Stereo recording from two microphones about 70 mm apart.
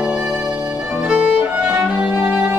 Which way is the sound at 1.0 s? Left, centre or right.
Centre.